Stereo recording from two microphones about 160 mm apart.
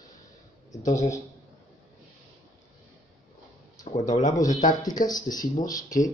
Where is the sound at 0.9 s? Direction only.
20° left (ahead or behind).